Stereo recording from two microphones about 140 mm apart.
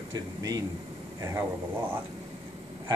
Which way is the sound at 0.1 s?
25° right (ahead or behind).